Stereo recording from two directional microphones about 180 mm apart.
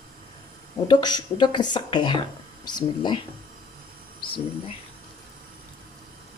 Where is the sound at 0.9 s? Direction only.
25° left (ahead or behind).